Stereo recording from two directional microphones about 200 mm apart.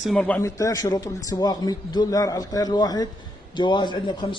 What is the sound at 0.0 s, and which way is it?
A man's voice, 5° left (ahead or behind).